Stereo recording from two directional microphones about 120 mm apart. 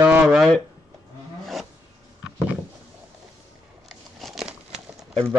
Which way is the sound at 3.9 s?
Centre (ahead or behind).